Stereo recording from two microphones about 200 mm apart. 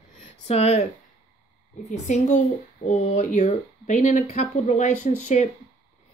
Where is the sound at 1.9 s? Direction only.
35° left (ahead or behind).